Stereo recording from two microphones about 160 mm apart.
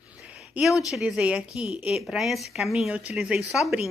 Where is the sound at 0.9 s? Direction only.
5° right (ahead or behind).